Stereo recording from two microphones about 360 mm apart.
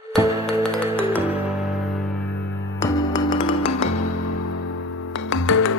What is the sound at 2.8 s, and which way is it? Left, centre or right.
Music, centre.